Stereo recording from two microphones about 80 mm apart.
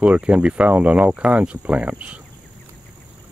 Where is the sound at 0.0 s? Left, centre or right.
Centre.